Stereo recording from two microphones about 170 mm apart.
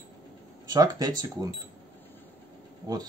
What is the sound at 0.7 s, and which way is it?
Speech, 20° right (ahead or behind).